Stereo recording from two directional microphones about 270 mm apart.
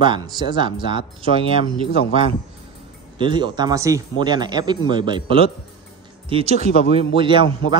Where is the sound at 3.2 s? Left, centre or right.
Centre.